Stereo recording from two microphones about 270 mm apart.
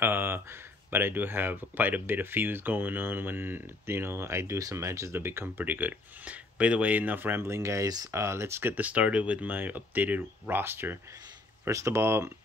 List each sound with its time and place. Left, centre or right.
0.0 s speech: centre